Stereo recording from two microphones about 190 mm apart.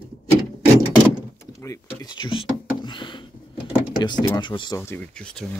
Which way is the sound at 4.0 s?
25° left (ahead or behind).